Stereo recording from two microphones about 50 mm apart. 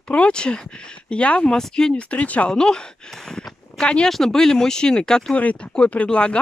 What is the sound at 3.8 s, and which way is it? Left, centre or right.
Speech, left.